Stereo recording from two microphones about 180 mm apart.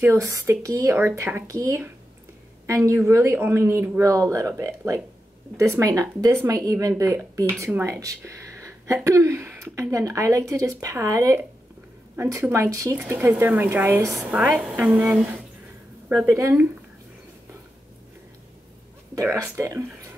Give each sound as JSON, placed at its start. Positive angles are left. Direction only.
{"t": 0.0, "sound": "speech", "side_deg": -15}
{"t": 16.3, "sound": "speech", "side_deg": -15}
{"t": 19.1, "sound": "speech", "side_deg": -20}